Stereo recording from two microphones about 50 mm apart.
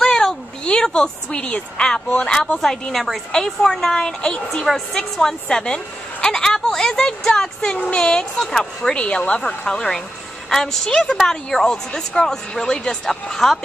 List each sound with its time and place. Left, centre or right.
0.0 s a woman's voice: centre
4.6 s speech: centre
7.7 s speech: left; by 13.6 s centre